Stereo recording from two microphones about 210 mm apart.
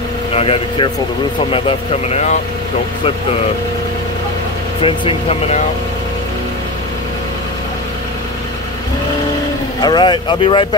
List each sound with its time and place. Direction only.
0.3 s speech: 30° left (ahead or behind)
4.8 s speech: 25° left (ahead or behind)
9.8 s speech: 20° left (ahead or behind)